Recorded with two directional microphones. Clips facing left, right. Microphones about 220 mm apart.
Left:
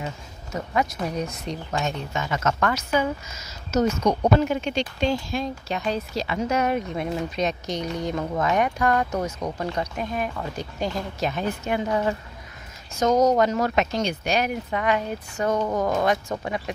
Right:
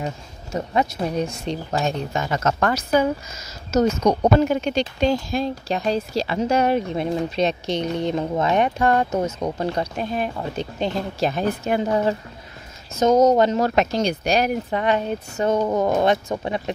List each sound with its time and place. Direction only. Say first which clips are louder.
0.0 s speech: right 4 dB; 30° right (ahead or behind)
12.9 s speech: right 4 dB; 25° right (ahead or behind)